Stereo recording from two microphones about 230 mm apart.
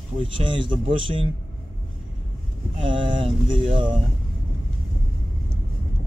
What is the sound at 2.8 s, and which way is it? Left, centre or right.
Speech, right.